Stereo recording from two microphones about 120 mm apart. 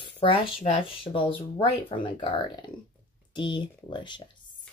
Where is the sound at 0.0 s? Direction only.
50° left (ahead or behind).